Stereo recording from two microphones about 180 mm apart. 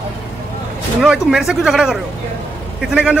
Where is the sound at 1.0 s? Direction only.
5° right (ahead or behind).